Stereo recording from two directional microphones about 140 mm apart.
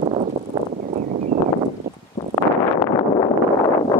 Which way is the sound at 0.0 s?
50° right (ahead or behind).